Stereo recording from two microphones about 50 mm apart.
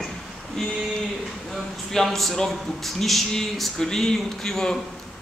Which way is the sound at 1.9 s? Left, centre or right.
Centre.